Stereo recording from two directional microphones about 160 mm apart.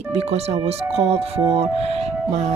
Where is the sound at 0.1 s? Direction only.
40° right (ahead or behind).